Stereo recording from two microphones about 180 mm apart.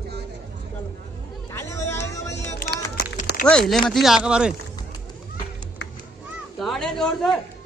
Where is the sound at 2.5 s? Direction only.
55° left (ahead or behind).